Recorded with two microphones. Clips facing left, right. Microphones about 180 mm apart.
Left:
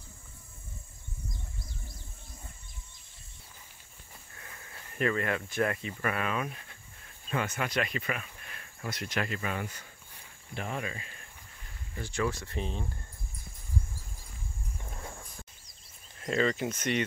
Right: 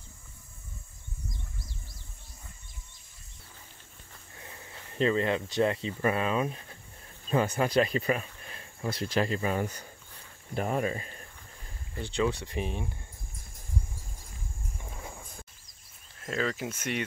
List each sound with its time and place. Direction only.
4.4 s speech: 25° right (ahead or behind)
11.9 s speech: 20° right (ahead or behind)
16.2 s speech: centre (ahead or behind)